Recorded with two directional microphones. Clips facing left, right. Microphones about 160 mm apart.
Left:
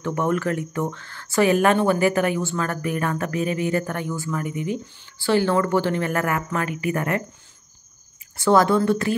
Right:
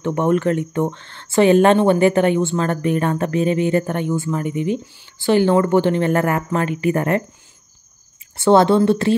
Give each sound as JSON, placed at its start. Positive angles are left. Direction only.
{"t": 0.0, "sound": "speech", "side_deg": -25}
{"t": 8.4, "sound": "speech", "side_deg": -25}